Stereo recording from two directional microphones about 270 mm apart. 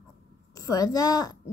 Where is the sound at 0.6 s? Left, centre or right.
Centre.